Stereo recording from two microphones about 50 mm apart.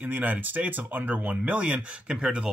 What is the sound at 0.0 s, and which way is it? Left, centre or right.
Speech, right.